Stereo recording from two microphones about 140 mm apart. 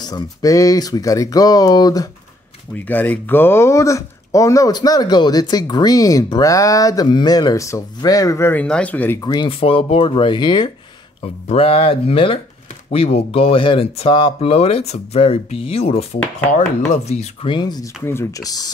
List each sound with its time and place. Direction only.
0.0 s speech: 25° left (ahead or behind)
2.7 s speech: 15° left (ahead or behind)
9.2 s speech: 30° left (ahead or behind)
11.4 s speech: 45° left (ahead or behind)
17.5 s speech: 30° left (ahead or behind)
18.0 s speech: 20° left (ahead or behind)